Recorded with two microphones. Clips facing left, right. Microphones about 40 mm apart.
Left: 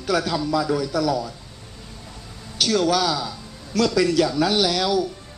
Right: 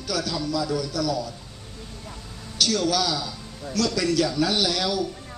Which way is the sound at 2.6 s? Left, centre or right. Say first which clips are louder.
Left 3 dB; centre.